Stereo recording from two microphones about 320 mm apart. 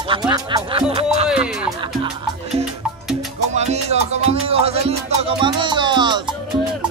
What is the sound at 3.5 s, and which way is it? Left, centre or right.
Music, right.